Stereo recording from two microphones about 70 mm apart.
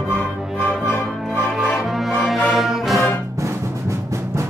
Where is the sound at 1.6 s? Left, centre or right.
Centre.